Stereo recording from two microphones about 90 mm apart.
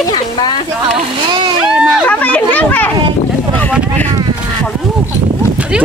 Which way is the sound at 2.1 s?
15° left (ahead or behind).